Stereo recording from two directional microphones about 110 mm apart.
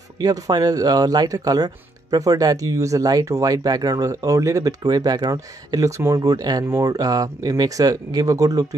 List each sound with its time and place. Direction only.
0.2 s speech: 35° right (ahead or behind)